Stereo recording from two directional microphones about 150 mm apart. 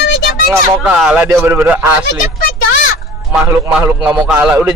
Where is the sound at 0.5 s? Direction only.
5° right (ahead or behind).